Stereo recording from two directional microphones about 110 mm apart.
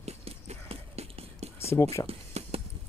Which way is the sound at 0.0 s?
70° right (ahead or behind).